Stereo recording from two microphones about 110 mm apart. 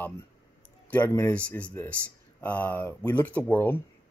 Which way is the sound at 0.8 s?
15° left (ahead or behind).